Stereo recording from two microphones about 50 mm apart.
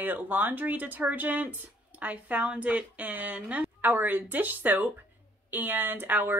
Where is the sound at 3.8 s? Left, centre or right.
Right.